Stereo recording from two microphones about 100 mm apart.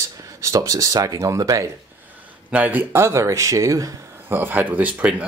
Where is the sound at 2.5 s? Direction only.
15° right (ahead or behind); by 4.0 s 35° right (ahead or behind).